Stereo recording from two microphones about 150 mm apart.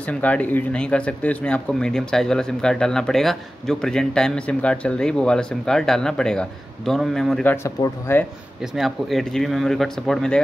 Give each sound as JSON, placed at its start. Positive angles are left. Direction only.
{"t": 0.0, "sound": "speech", "side_deg": 10}
{"t": 7.5, "sound": "speech", "side_deg": 20}
{"t": 8.7, "sound": "speech", "side_deg": 0}